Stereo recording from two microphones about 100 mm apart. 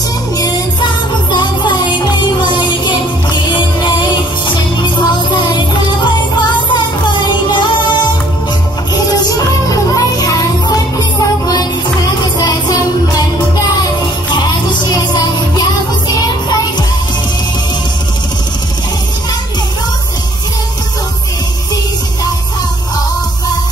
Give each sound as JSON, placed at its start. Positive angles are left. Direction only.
{"t": 1.3, "sound": "music", "side_deg": 50}
{"t": 4.8, "sound": "music", "side_deg": 50}
{"t": 9.2, "sound": "music", "side_deg": 35}
{"t": 14.3, "sound": "music", "side_deg": 50}